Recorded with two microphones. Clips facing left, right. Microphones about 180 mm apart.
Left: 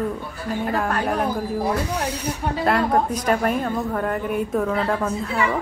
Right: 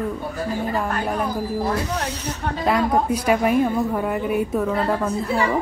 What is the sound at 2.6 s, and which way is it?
A woman's voice, centre (ahead or behind).